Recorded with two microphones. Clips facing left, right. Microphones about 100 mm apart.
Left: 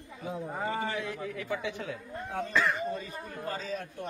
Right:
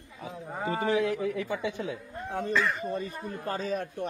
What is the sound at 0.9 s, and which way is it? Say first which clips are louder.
Speech: right 8 dB; 75° right (ahead or behind).